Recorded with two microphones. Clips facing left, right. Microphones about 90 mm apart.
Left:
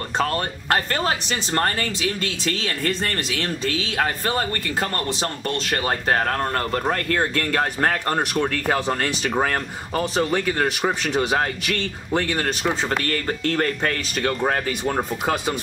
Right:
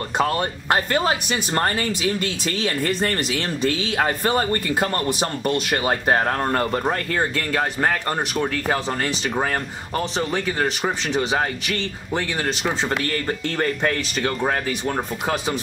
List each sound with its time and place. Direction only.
0.2 s speech: 15° right (ahead or behind)
6.8 s speech: 5° right (ahead or behind)